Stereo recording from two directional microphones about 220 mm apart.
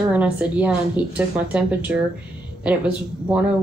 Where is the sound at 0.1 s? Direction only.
5° right (ahead or behind).